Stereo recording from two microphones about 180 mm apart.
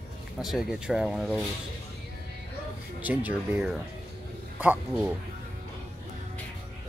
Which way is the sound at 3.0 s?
10° right (ahead or behind).